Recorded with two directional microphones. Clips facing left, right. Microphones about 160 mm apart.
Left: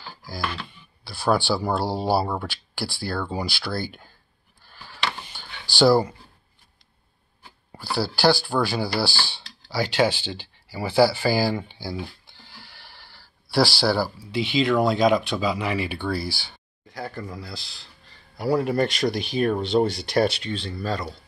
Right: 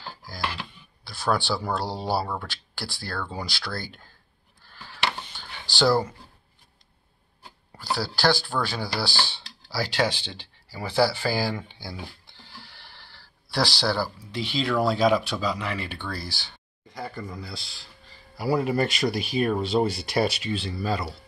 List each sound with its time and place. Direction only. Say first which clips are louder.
1.0 s speech: left 4 dB; 10° left (ahead or behind)
5.2 s a sound: even; 10° left (ahead or behind)
5.8 s speech: left 4 dB; 10° left (ahead or behind)
8.0 s speech: left 4 dB; 5° left (ahead or behind)
9.1 s speech: right 2 dB; 20° right (ahead or behind)
9.7 s speech: left 4 dB; centre (ahead or behind)